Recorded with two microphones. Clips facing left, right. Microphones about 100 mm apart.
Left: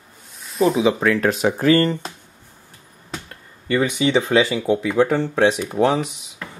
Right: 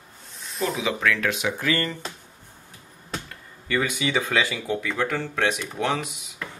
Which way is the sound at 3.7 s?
20° left (ahead or behind).